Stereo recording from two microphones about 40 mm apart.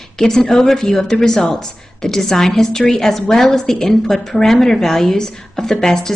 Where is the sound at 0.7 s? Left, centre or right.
Centre.